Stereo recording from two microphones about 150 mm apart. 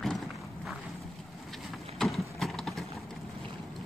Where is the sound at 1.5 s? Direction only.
Centre (ahead or behind).